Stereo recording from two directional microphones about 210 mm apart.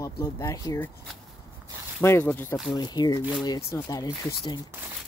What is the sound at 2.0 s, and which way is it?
Speech, 10° left (ahead or behind).